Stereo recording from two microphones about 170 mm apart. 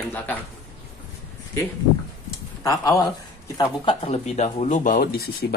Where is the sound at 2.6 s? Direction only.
20° left (ahead or behind).